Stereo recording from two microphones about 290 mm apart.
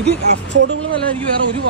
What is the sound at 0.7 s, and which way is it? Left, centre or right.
Speech, right.